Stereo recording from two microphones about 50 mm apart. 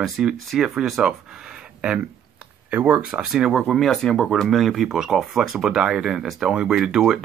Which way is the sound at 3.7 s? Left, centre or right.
Centre.